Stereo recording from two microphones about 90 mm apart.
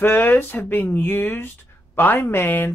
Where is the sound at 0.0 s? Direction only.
20° left (ahead or behind).